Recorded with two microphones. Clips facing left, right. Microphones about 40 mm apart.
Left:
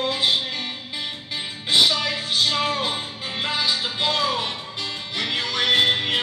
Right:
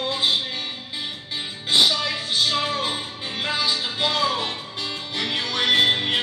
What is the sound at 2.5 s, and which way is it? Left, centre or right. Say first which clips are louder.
Music: left 1 dB; left.